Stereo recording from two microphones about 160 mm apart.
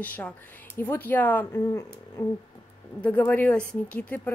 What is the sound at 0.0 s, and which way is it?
Speech, 10° left (ahead or behind).